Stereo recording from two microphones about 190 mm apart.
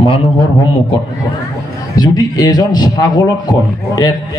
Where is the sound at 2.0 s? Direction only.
20° left (ahead or behind).